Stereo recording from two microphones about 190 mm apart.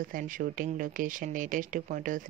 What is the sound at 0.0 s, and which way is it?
Speech, 45° right (ahead or behind).